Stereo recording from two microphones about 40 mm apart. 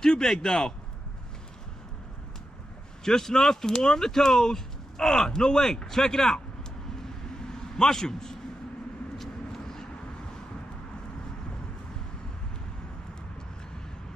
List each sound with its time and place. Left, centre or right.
0.0 s speech: centre
3.1 s speech: centre
7.7 s a man's voice: centre
9.2 s vehicle: centre